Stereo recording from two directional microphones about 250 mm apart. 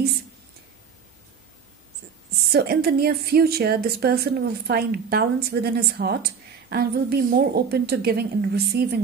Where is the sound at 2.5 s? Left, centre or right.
Right.